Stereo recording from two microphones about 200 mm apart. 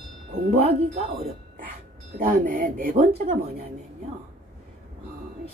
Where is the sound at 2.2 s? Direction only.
45° right (ahead or behind).